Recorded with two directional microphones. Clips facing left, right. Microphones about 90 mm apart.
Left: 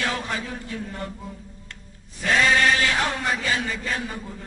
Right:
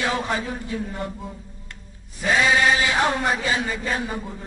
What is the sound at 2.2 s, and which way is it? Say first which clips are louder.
Chant: right 1 dB; 10° right (ahead or behind).